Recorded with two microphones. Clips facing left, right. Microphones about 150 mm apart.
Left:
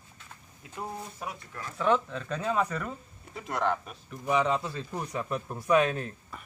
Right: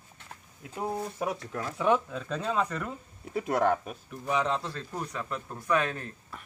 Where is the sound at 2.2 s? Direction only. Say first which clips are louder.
Left 1 dB; centre (ahead or behind).